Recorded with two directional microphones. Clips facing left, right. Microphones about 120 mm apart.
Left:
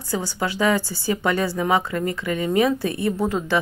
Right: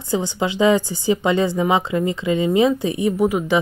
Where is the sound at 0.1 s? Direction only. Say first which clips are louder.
Right 4 dB; 20° right (ahead or behind).